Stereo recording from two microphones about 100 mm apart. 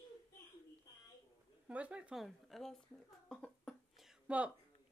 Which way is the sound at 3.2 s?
10° left (ahead or behind).